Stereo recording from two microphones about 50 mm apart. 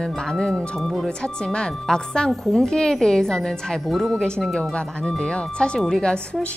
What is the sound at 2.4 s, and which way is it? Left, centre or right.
Speech, centre.